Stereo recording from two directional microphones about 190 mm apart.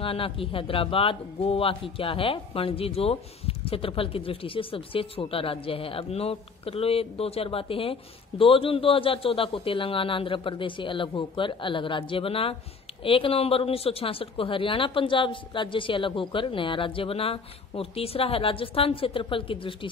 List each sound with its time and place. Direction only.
0.0 s speech: 30° left (ahead or behind)